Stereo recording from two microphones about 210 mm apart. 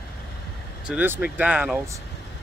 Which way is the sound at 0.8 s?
10° right (ahead or behind).